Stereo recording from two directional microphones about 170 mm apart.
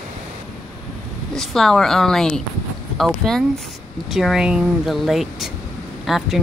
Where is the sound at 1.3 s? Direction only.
5° left (ahead or behind).